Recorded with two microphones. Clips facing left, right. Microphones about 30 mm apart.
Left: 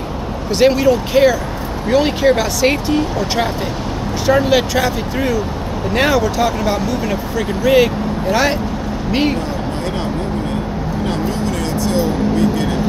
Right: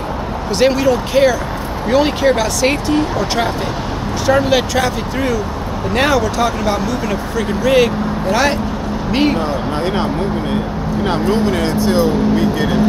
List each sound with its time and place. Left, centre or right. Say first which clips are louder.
0.5 s speech: left 1 dB; centre
11.1 s speech: right 6 dB; right